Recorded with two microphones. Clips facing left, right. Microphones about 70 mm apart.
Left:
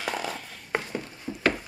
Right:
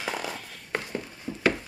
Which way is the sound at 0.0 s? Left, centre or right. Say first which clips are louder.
Left 1 dB; centre.